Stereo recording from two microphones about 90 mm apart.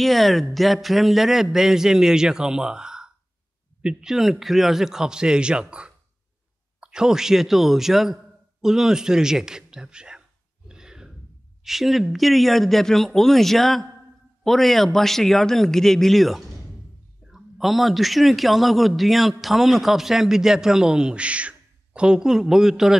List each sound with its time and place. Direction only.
0.0 s a man's voice: centre (ahead or behind)
10.7 s sigh: 5° right (ahead or behind)
11.6 s a man's voice: 5° right (ahead or behind)